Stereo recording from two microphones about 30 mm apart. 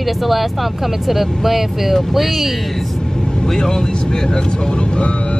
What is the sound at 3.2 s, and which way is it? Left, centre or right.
Speech, left.